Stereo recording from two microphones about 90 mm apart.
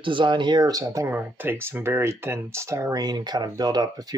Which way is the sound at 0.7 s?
40° right (ahead or behind).